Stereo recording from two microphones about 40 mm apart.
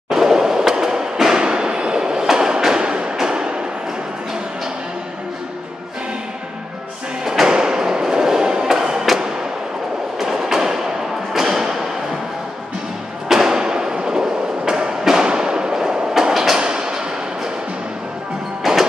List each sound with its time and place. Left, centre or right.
0.1 s skateboard: centre
3.2 s music: centre
7.2 s music: centre
10.1 s train: centre
11.3 s thump: centre
13.3 s a sound: centre
16.3 s train: centre
16.5 s train: right
18.6 s music: centre